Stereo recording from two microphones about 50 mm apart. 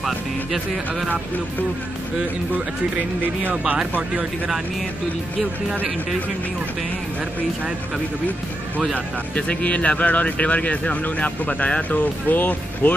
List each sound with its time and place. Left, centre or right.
0.0 s speech: centre
9.3 s speech: left